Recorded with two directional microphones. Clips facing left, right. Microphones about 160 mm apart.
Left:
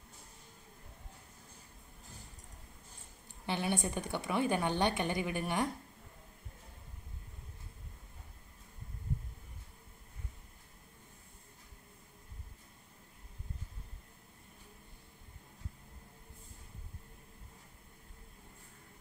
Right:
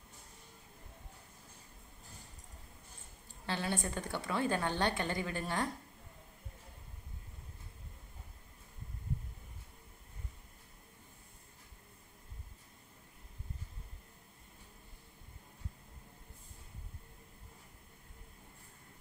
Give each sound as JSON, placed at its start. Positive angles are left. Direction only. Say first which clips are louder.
{"t": 3.4, "sound": "a woman's voice", "louder": "left 2 dB", "side_deg": 15}